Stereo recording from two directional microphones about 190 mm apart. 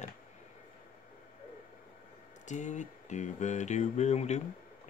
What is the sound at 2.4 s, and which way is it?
Speech, 40° left (ahead or behind).